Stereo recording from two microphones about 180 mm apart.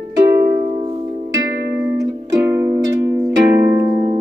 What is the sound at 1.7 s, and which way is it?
Music, 10° right (ahead or behind).